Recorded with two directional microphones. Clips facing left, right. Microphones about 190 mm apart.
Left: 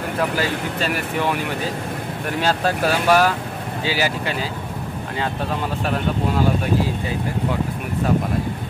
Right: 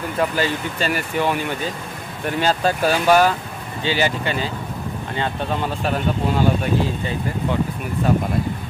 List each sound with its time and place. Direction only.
0.2 s speech: centre (ahead or behind)